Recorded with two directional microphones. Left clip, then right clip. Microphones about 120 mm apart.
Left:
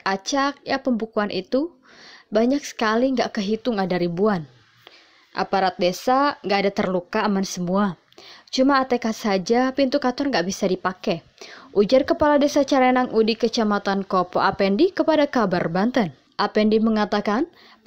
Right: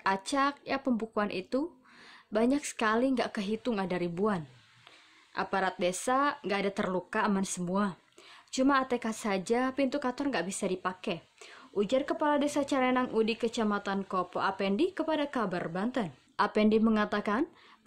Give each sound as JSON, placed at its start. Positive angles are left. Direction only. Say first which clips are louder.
{"t": 0.0, "sound": "a woman's voice", "louder": "left 6 dB", "side_deg": 25}
{"t": 16.3, "sound": "a woman's voice", "louder": "left 7 dB", "side_deg": 25}